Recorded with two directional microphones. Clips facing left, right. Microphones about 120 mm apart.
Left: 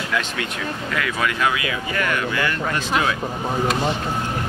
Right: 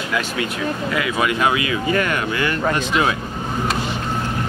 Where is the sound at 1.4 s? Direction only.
25° right (ahead or behind).